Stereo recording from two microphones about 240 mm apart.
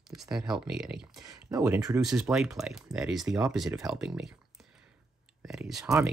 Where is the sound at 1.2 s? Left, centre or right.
Centre.